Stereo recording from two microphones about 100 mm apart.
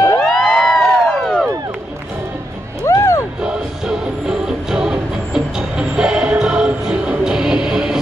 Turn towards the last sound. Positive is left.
turn(degrees=-5)  # may be behind; listen again after turning